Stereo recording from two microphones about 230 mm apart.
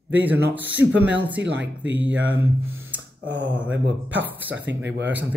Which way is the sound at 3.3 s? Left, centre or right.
Right.